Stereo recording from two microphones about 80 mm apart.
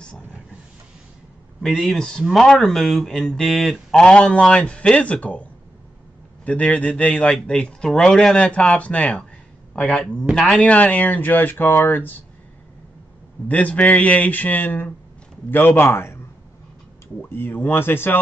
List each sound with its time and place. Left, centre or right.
1.6 s speech: centre
3.9 s a man's voice: centre
10.6 s speech: centre
13.5 s speech: centre
17.2 s speech: left